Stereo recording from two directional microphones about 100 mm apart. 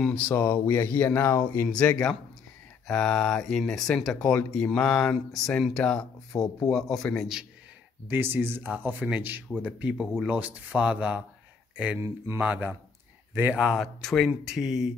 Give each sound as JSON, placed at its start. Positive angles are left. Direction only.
{"t": 0.0, "sound": "speech", "side_deg": 15}
{"t": 1.7, "sound": "speech", "side_deg": 10}
{"t": 8.1, "sound": "speech", "side_deg": -20}